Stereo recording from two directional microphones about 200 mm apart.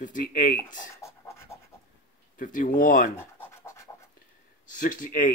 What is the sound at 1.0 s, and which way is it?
Pant, 15° left (ahead or behind).